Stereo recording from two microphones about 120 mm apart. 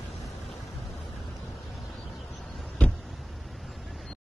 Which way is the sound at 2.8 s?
10° left (ahead or behind).